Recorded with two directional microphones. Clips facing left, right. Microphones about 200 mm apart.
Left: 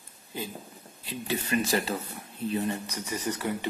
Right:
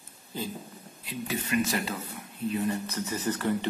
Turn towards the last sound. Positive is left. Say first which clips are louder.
# right 2 dB
turn(degrees=10)  # may be behind; listen again after turning